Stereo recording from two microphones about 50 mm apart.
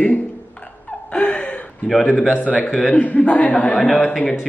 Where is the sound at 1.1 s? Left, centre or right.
Left.